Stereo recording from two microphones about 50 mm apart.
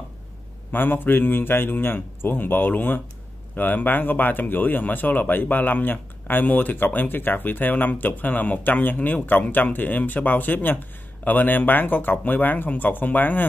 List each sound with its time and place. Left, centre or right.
0.7 s a man's voice: left